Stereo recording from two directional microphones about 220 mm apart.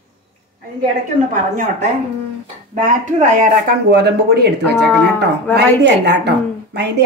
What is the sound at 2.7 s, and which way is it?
A woman's voice, 35° right (ahead or behind).